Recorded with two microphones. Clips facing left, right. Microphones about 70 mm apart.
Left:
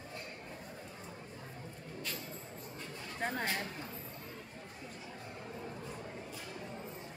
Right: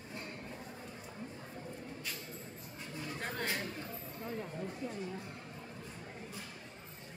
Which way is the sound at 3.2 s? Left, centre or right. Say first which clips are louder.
Left 3 dB; centre.